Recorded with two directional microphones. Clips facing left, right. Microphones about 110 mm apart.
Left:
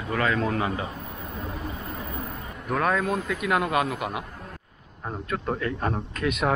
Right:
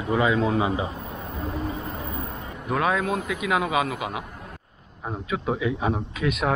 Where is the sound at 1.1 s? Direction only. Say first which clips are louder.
Right 3 dB; centre (ahead or behind).